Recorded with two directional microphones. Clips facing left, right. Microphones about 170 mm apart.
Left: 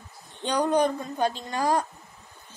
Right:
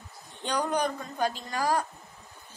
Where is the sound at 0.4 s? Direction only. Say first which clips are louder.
Left 5 dB; 20° left (ahead or behind).